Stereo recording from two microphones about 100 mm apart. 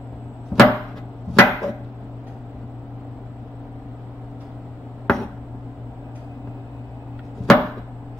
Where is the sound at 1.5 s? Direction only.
Centre (ahead or behind).